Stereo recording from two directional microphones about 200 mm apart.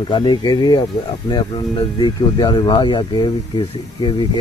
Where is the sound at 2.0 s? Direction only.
20° left (ahead or behind).